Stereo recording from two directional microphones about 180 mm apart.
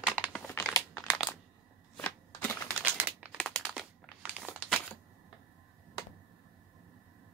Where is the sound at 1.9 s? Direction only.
5° left (ahead or behind).